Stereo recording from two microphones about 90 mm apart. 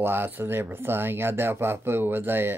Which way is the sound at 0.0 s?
25° right (ahead or behind).